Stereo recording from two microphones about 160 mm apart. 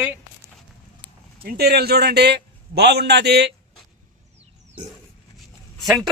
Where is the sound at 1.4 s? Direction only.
75° right (ahead or behind).